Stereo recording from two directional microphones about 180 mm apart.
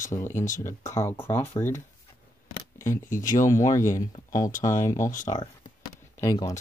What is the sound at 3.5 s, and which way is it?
Speech, 15° left (ahead or behind).